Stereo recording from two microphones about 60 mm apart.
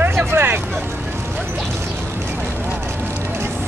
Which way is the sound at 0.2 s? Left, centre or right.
Right.